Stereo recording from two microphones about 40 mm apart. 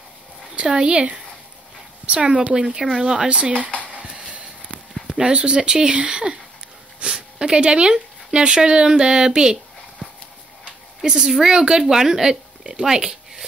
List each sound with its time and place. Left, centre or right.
0.7 s a woman's voice: centre
2.0 s a woman's voice: right
4.2 s a sound: right
5.1 s speech: right
7.0 s a sound: right
7.3 s speech: centre
11.2 s a woman's voice: centre